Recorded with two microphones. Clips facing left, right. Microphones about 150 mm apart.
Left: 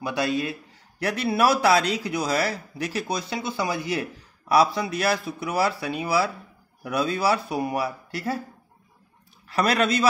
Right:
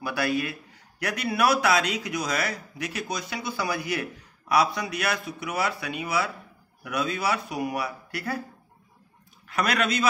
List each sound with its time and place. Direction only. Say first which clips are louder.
0.0 s a man's voice: left 2 dB; 20° left (ahead or behind)
9.5 s a man's voice: left 4 dB; 30° left (ahead or behind)